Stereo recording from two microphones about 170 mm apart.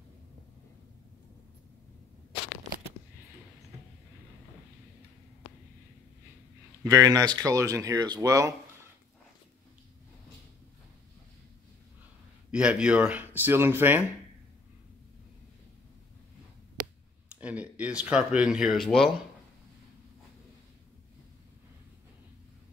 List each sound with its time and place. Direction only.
6.8 s speech: 20° right (ahead or behind)
12.4 s speech: 5° right (ahead or behind)
17.4 s speech: 10° right (ahead or behind)